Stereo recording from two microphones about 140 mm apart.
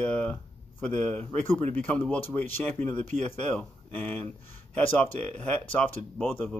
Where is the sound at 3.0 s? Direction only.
55° right (ahead or behind).